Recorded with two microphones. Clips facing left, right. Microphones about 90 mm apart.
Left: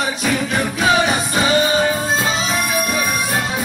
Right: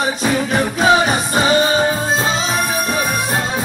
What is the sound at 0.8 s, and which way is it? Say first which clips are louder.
Music: right 2 dB; 30° right (ahead or behind).